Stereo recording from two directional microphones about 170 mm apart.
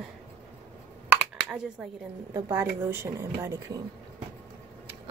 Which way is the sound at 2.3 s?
15° right (ahead or behind).